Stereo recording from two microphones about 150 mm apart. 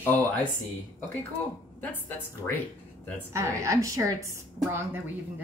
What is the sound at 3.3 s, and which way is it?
Speech, 20° right (ahead or behind).